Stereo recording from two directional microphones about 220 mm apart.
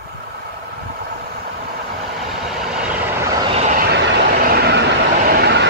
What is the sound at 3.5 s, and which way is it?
Vehicle, 30° right (ahead or behind).